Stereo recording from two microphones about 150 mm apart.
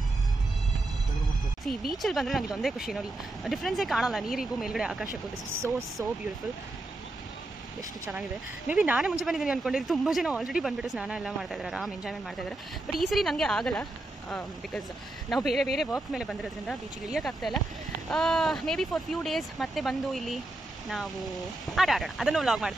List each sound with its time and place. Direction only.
1.7 s speech: centre (ahead or behind)
6.0 s speech: 15° right (ahead or behind)
8.0 s speech: 10° right (ahead or behind)
15.2 s speech: centre (ahead or behind)